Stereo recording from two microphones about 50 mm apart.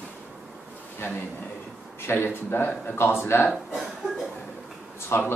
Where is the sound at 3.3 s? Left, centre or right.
Left.